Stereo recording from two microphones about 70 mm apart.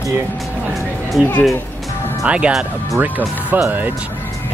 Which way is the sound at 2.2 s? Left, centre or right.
Centre.